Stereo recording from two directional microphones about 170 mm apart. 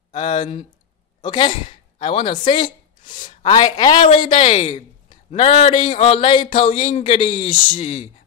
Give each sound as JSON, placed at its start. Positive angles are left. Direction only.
{"t": 0.1, "sound": "speech", "side_deg": 30}